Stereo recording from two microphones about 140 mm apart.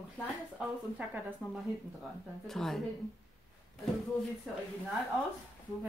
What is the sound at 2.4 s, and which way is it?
Speech, centre (ahead or behind).